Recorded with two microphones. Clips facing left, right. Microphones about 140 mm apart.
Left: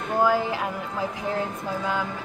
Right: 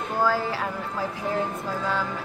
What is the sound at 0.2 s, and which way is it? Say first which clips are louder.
Speech: left 2 dB; 15° left (ahead or behind).